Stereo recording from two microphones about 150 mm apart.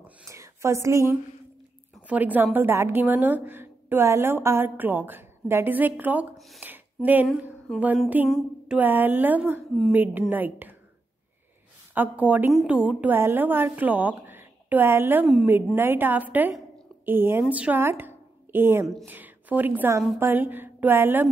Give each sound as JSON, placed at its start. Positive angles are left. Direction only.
{"t": 0.0, "sound": "a sound", "side_deg": -20}
{"t": 2.0, "sound": "a woman's voice", "side_deg": -10}
{"t": 6.6, "sound": "a sound", "side_deg": -10}
{"t": 7.7, "sound": "speech", "side_deg": 0}
{"t": 8.3, "sound": "a woman's voice", "side_deg": -10}
{"t": 11.9, "sound": "a woman's voice", "side_deg": -10}